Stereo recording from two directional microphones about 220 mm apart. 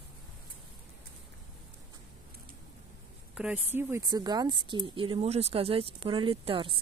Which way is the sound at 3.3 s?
5° right (ahead or behind).